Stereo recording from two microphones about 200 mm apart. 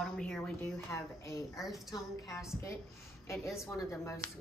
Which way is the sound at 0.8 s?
15° left (ahead or behind).